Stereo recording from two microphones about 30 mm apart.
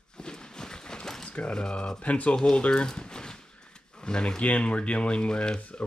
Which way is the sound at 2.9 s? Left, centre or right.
Left.